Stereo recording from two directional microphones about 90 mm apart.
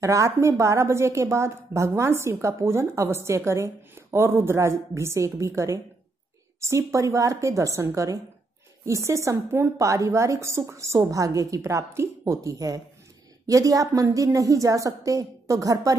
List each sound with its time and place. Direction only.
0.0 s a woman's voice: 35° right (ahead or behind)